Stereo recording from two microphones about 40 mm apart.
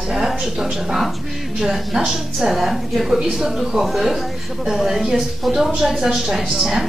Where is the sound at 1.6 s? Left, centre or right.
Centre.